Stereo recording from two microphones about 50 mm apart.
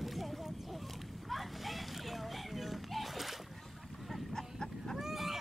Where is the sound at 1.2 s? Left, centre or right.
Centre.